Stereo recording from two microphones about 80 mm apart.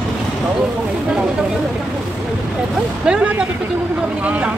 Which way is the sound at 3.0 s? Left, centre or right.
Centre.